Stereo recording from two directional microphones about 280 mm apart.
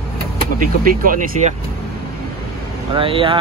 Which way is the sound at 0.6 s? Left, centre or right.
Right.